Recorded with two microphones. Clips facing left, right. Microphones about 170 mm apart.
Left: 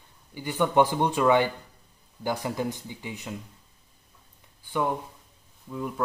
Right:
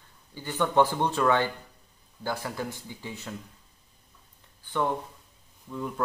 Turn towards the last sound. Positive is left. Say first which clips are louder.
# left 1 dB
turn(degrees=5)  # may be behind; listen again after turning